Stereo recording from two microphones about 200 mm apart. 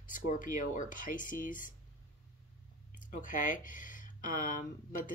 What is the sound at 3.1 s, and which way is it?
Speech, 40° left (ahead or behind).